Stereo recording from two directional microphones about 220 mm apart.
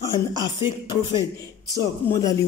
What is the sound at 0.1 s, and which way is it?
Speech, 20° left (ahead or behind).